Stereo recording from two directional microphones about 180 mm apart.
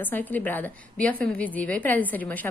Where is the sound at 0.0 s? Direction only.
10° left (ahead or behind).